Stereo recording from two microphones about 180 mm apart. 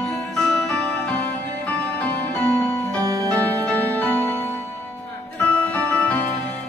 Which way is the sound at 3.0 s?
15° right (ahead or behind).